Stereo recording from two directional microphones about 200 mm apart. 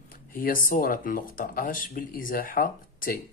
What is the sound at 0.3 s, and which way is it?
Speech, 45° left (ahead or behind).